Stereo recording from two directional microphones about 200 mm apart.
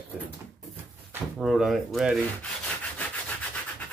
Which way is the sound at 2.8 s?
5° left (ahead or behind).